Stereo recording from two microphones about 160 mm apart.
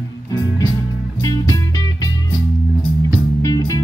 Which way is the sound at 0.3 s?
20° left (ahead or behind).